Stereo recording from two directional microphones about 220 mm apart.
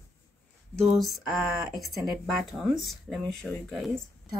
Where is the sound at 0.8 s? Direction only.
Centre (ahead or behind).